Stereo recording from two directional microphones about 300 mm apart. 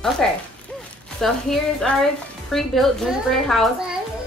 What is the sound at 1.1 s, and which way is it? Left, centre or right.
A woman's voice, centre.